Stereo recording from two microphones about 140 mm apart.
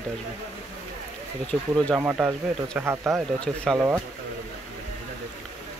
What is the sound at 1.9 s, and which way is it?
Speech, 10° right (ahead or behind).